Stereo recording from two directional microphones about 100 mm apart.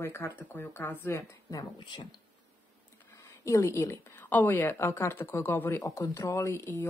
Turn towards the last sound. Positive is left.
turn(degrees=30)  # may be behind; listen again after turning